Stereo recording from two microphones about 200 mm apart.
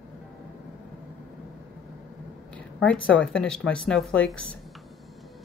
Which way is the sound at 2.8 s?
5° left (ahead or behind).